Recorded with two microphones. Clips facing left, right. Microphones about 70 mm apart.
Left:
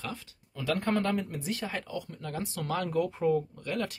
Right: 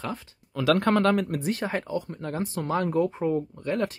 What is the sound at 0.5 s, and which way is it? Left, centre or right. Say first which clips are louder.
Speech: right 7 dB; right.